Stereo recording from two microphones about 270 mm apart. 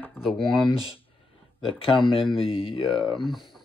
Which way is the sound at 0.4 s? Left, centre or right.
Centre.